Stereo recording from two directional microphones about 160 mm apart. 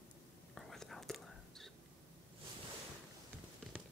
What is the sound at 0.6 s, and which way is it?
Whispering, centre (ahead or behind).